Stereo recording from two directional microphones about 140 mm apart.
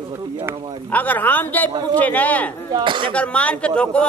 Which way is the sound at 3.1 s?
10° left (ahead or behind).